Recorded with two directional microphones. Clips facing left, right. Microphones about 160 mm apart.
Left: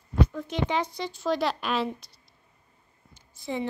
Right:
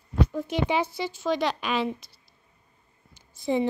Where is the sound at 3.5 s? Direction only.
25° right (ahead or behind).